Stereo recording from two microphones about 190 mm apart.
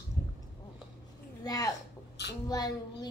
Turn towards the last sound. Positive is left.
turn(degrees=20)  # may be behind; listen again after turning